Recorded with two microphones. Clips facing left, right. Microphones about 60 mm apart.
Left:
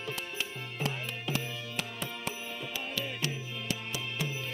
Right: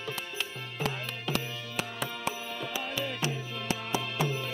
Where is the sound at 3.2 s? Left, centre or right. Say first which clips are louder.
Right 3 dB; right.